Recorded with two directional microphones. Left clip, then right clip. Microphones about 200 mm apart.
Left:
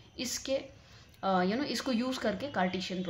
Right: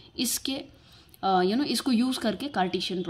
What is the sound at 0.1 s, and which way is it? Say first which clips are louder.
A woman's voice: right 3 dB; 35° right (ahead or behind).